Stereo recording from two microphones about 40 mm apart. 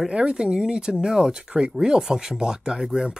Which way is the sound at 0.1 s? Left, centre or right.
Right.